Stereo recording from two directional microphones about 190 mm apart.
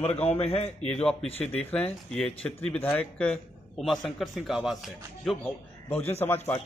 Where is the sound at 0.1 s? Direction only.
35° left (ahead or behind).